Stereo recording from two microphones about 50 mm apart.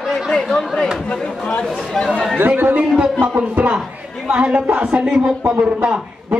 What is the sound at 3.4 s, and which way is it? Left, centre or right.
Speech, right.